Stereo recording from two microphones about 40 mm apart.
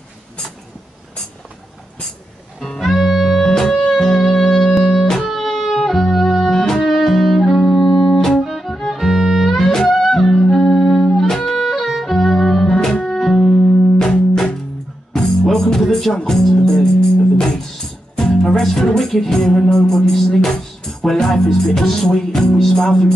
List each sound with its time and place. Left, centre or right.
2.6 s music: centre
6.5 s music: centre
6.8 s music: centre
9.6 s music: centre
13.6 s music: left
15.2 s music: centre
18.1 s music: centre